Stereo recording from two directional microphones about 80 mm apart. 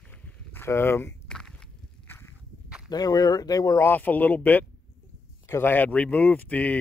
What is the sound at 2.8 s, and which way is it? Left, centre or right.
Speech, left.